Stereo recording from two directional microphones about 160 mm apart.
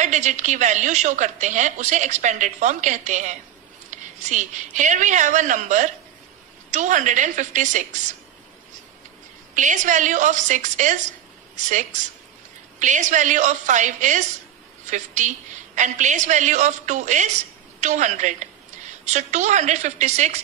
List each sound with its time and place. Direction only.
0.0 s a woman's voice: 50° right (ahead or behind)
9.5 s a woman's voice: 50° right (ahead or behind)
12.7 s a woman's voice: 50° right (ahead or behind)